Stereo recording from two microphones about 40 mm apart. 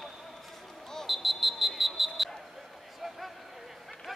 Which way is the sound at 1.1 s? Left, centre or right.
Centre.